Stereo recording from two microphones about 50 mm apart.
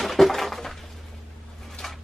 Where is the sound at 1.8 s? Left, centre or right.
Centre.